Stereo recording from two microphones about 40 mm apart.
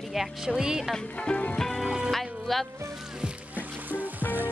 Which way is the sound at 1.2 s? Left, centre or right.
Left.